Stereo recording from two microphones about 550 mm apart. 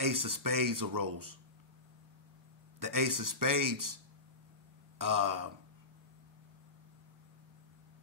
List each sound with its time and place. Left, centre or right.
0.0 s speech: right
2.8 s speech: right